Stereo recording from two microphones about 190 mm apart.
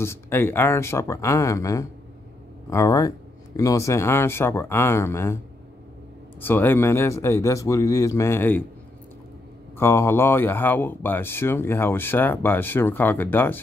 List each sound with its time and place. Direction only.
0.0 s speech: 15° left (ahead or behind)
6.4 s speech: 10° left (ahead or behind)
9.8 s speech: 10° left (ahead or behind)